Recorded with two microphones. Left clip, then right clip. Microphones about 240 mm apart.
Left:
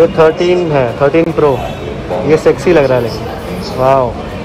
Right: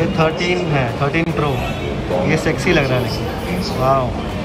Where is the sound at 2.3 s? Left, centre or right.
Centre.